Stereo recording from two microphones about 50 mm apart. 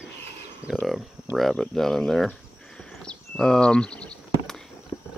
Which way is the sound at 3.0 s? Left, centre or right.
Centre.